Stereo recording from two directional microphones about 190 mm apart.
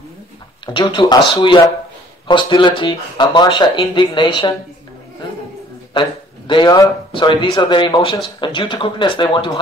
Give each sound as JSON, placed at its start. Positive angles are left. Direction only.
{"t": 0.7, "sound": "speech", "side_deg": 25}
{"t": 5.9, "sound": "speech", "side_deg": 25}